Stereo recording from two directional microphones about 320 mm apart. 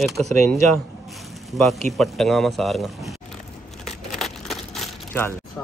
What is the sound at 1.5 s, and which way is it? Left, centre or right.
Speech, centre.